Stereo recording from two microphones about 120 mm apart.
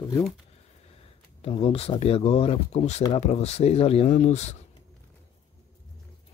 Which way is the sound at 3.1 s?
65° left (ahead or behind).